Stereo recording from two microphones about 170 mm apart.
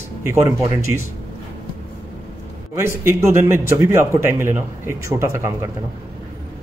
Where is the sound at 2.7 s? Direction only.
15° right (ahead or behind).